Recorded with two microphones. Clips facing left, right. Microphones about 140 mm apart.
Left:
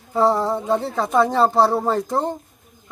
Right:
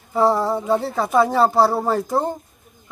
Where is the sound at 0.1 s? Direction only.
5° right (ahead or behind).